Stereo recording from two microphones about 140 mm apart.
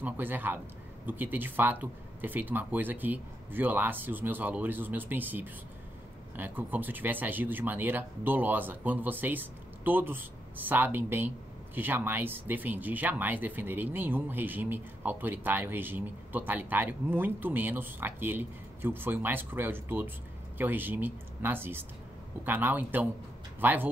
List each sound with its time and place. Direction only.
0.0 s speech: 15° right (ahead or behind)